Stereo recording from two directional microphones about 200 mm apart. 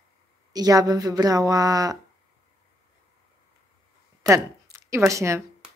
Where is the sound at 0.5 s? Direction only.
20° right (ahead or behind).